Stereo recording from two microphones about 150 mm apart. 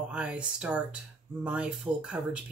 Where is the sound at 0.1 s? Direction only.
5° right (ahead or behind).